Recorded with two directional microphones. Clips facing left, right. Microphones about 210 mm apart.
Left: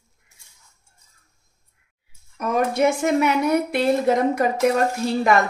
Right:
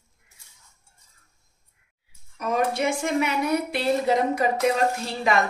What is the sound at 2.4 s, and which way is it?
A woman's voice, 45° left (ahead or behind).